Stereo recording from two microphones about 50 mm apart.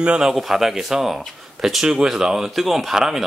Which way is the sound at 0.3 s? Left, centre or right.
Centre.